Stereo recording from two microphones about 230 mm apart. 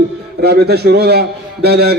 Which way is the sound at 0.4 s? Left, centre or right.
Right.